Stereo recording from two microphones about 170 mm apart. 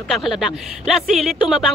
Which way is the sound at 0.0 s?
Centre (ahead or behind).